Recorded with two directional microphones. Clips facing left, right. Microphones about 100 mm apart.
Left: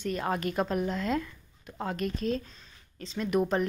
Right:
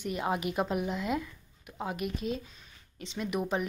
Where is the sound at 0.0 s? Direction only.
15° right (ahead or behind).